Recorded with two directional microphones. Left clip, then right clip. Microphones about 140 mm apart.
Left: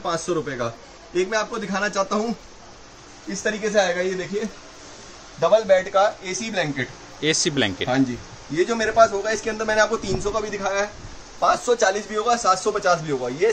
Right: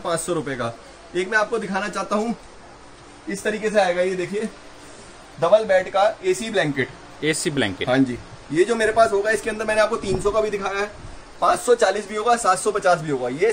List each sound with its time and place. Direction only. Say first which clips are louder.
0.0 s a man's voice: even; 5° left (ahead or behind)
3.3 s a man's voice: right 1 dB; centre (ahead or behind)
5.4 s a man's voice: even; 20° left (ahead or behind)
11.3 s a man's voice: right 2 dB; centre (ahead or behind)